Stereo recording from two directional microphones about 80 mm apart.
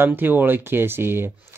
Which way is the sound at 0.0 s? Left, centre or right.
Right.